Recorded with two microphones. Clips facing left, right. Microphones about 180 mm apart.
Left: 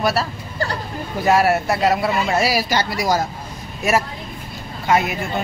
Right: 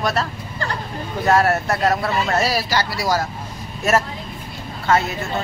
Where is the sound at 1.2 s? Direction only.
10° left (ahead or behind).